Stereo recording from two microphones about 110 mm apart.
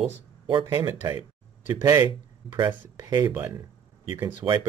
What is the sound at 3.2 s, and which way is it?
Speech, 15° right (ahead or behind).